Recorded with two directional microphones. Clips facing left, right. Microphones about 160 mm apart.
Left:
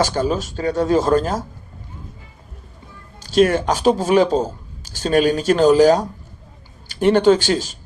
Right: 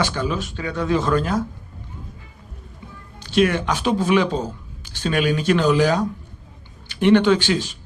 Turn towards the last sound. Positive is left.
turn(degrees=40)  # may be behind; listen again after turning